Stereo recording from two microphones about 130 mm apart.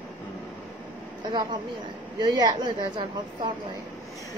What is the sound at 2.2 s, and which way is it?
Speech, 25° right (ahead or behind).